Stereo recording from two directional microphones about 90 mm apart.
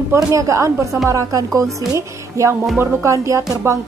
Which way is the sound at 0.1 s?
35° right (ahead or behind).